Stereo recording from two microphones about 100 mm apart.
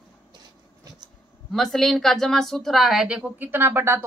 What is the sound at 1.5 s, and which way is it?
A woman's voice, 5° left (ahead or behind).